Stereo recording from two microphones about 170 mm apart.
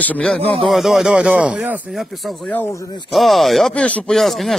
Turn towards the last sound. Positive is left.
turn(degrees=0)  # may be behind; listen again after turning